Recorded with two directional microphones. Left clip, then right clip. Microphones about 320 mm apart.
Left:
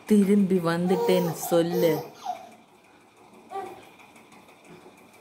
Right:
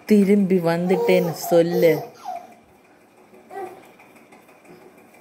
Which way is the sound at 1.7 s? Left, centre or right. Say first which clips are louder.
Right 6 dB; centre.